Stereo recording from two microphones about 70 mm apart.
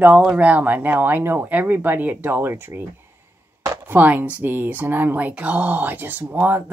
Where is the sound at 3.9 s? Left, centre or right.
Right.